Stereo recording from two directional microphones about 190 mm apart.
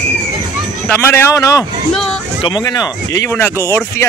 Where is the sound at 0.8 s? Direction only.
10° left (ahead or behind).